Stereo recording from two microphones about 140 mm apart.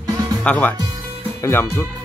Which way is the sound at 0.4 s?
10° left (ahead or behind).